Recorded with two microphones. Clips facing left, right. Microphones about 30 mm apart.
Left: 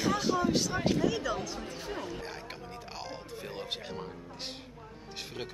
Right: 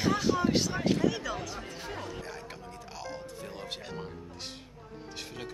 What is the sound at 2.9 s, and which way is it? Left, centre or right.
Music, left.